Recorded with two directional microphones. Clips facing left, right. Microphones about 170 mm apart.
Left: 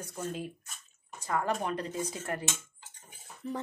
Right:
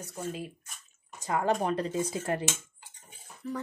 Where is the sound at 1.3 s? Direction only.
25° right (ahead or behind).